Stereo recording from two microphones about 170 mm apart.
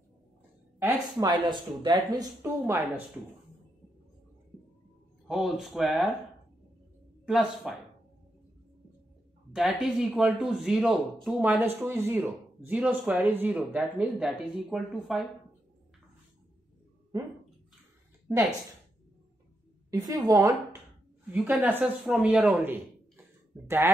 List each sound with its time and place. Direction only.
1.0 s speech: 25° right (ahead or behind)
5.3 s speech: centre (ahead or behind)
7.2 s speech: 5° right (ahead or behind)
9.5 s speech: 5° right (ahead or behind)
17.1 s speech: 20° right (ahead or behind)
19.9 s speech: 20° right (ahead or behind)
21.3 s a man's voice: centre (ahead or behind)